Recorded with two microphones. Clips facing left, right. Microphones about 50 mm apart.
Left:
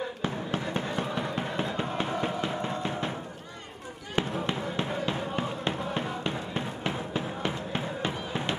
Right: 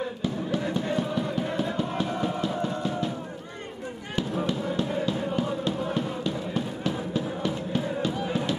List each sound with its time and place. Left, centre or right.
0.2 s basketball bounce: left
4.1 s fireworks: left